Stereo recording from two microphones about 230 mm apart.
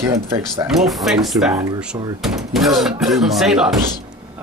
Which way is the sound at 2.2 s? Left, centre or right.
Centre.